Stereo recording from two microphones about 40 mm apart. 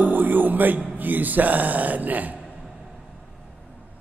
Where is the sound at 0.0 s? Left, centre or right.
Right.